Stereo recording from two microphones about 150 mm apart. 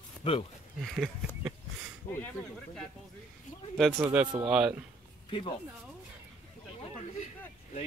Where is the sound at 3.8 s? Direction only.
Centre (ahead or behind).